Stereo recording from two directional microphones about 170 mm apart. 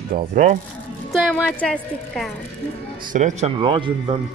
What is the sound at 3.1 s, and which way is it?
Speech, 45° right (ahead or behind).